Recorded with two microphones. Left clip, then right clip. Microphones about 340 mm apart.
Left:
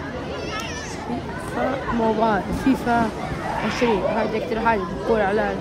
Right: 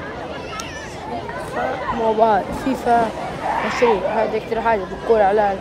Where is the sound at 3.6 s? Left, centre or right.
Centre.